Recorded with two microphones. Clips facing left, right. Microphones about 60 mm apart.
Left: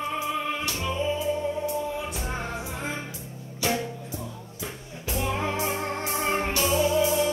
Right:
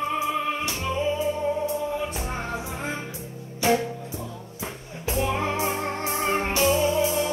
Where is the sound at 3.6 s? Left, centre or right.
Right.